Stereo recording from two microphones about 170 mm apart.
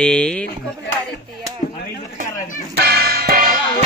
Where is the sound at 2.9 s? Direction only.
65° right (ahead or behind).